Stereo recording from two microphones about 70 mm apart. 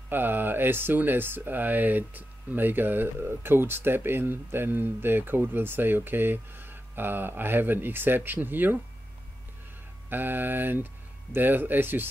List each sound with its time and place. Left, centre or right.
0.1 s speech: right
10.0 s speech: right